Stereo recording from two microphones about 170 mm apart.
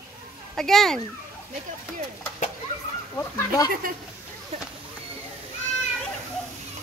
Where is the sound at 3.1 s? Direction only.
20° left (ahead or behind).